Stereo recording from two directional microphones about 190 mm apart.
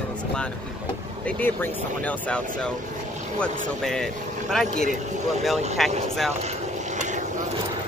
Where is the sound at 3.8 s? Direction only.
Centre (ahead or behind).